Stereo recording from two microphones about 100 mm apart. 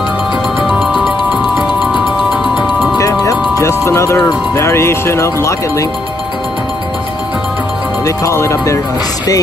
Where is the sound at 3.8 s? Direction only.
30° left (ahead or behind).